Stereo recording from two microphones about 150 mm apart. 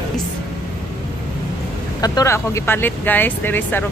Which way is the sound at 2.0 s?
20° left (ahead or behind).